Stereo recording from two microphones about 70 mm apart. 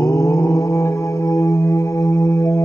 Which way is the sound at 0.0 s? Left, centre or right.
Left.